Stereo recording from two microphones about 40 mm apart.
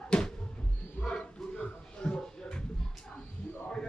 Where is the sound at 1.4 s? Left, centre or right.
Centre.